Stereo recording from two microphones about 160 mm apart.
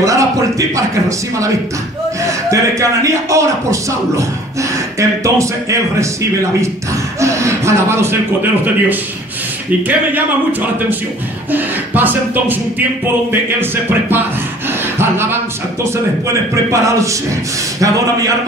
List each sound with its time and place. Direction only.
0.0 s a man's voice: 20° right (ahead or behind)
2.5 s speech: 20° right (ahead or behind)
7.2 s speech: 20° right (ahead or behind)
11.5 s speech: 10° right (ahead or behind)
16.8 s speech: 20° right (ahead or behind)